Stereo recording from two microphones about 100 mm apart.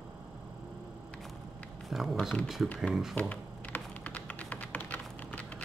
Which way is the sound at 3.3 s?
15° left (ahead or behind).